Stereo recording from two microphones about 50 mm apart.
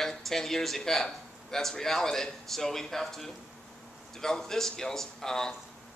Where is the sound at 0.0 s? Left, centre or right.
Centre.